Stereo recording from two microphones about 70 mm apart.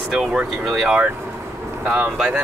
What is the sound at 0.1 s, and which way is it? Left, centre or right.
Speech, centre.